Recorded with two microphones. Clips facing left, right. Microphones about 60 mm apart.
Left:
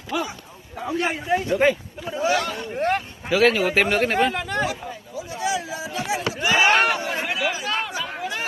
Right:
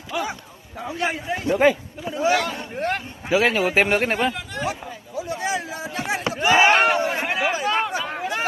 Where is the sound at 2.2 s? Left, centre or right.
Centre.